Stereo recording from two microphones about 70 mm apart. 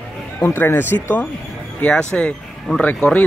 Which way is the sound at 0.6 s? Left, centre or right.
Left.